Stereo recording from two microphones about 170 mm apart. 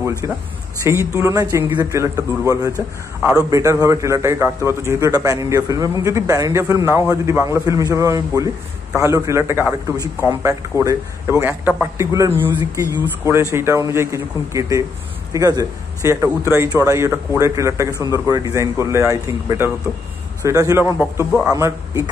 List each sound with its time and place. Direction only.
0.2 s a man's voice: 20° right (ahead or behind)